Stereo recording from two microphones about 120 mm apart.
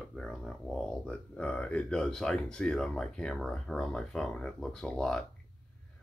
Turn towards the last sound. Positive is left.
turn(degrees=5)  # may be behind; listen again after turning